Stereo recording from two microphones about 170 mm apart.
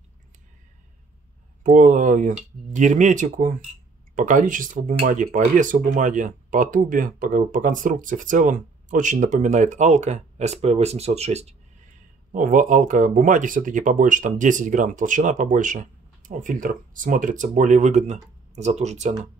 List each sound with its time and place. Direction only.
1.6 s speech: 50° right (ahead or behind)
12.3 s speech: 50° right (ahead or behind)